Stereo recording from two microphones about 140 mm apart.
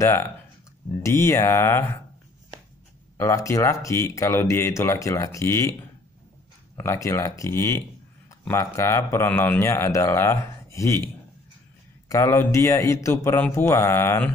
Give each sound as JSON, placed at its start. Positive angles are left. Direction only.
{"t": 0.0, "sound": "speech", "side_deg": 20}
{"t": 3.2, "sound": "speech", "side_deg": 20}
{"t": 6.8, "sound": "speech", "side_deg": 20}
{"t": 12.1, "sound": "speech", "side_deg": 20}